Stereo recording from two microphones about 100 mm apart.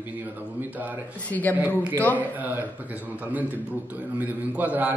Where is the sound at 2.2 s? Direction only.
15° right (ahead or behind).